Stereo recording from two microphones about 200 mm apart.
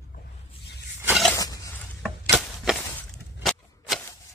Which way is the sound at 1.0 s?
5° right (ahead or behind).